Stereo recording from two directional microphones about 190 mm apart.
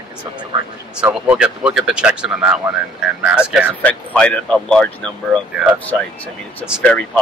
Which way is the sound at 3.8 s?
5° left (ahead or behind).